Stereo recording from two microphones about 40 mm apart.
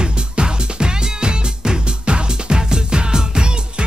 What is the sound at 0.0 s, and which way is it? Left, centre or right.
Music, right.